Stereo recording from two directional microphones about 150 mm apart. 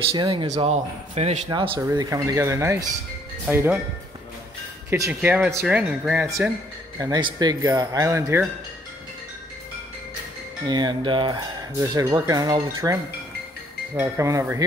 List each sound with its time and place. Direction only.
0.1 s speech: 35° right (ahead or behind)
0.5 s a man's voice: 45° right (ahead or behind)
1.8 s speech: 20° right (ahead or behind)
4.8 s speech: 20° right (ahead or behind)
7.0 s speech: 30° right (ahead or behind)
10.7 s speech: 30° right (ahead or behind)